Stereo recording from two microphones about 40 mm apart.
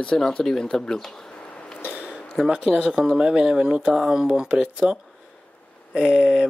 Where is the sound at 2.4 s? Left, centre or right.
Centre.